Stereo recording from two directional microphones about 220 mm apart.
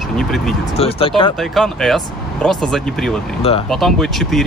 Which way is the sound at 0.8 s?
25° left (ahead or behind).